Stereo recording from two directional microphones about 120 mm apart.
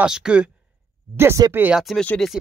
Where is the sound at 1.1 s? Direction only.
20° right (ahead or behind).